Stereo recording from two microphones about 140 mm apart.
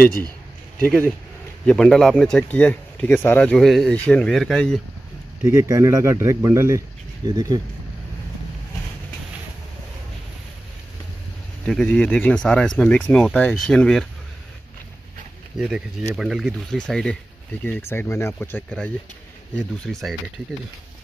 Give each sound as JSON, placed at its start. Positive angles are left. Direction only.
{"t": 0.7, "sound": "speech", "side_deg": 10}
{"t": 5.4, "sound": "speech", "side_deg": -20}
{"t": 11.6, "sound": "speech", "side_deg": 5}
{"t": 15.5, "sound": "speech", "side_deg": -5}
{"t": 17.6, "sound": "speech", "side_deg": 15}
{"t": 19.5, "sound": "speech", "side_deg": 5}